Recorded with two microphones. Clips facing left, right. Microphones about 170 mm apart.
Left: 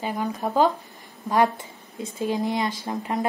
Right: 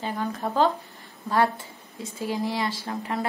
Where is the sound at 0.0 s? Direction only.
15° left (ahead or behind).